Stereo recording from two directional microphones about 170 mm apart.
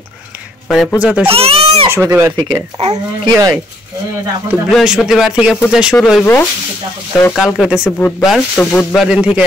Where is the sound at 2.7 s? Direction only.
40° right (ahead or behind).